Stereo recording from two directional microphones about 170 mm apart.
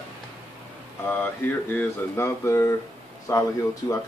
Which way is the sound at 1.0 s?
10° left (ahead or behind).